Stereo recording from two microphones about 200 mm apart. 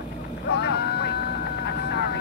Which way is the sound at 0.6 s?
55° left (ahead or behind).